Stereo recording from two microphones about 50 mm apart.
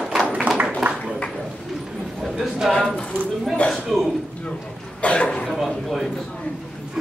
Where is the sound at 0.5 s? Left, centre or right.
Right.